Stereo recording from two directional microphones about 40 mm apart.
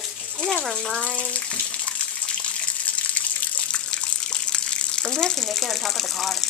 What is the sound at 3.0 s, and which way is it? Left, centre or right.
Water, left.